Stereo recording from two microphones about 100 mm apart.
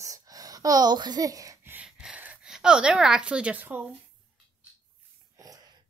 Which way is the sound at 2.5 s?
5° right (ahead or behind).